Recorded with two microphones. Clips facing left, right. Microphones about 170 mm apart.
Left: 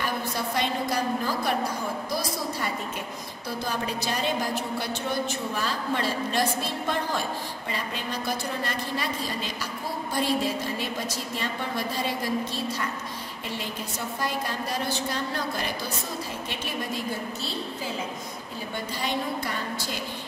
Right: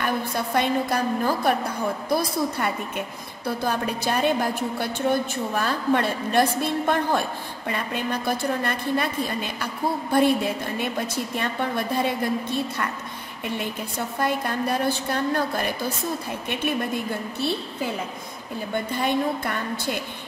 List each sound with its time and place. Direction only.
0.0 s a woman's voice: 55° right (ahead or behind)
18.9 s a woman's voice: 55° right (ahead or behind)